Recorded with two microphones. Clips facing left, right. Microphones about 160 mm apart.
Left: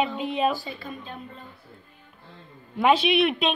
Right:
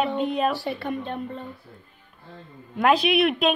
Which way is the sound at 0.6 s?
65° right (ahead or behind).